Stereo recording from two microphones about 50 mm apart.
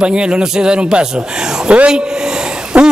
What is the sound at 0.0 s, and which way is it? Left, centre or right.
A man's voice, centre.